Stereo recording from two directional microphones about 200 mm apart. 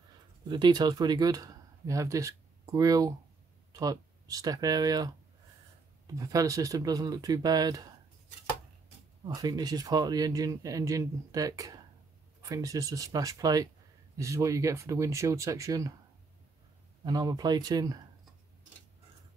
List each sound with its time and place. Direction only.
0.5 s speech: 20° right (ahead or behind)
9.2 s speech: 15° right (ahead or behind)
17.0 s speech: 20° right (ahead or behind)